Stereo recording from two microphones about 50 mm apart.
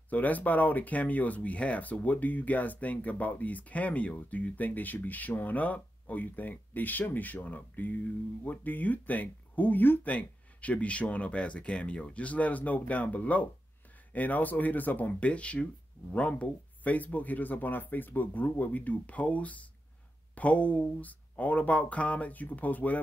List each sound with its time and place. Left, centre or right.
0.1 s speech: left
10.0 s speech: left
15.1 s speech: left